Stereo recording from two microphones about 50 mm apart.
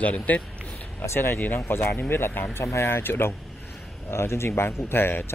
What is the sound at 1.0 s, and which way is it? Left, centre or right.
Speech, left.